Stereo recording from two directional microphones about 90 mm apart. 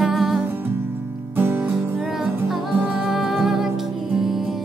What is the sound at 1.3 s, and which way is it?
Music, 20° right (ahead or behind).